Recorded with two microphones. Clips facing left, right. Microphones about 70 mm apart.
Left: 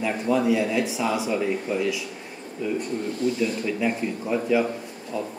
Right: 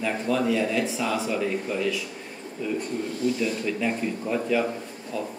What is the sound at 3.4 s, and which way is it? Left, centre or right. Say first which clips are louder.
A man's voice: left 2 dB; centre.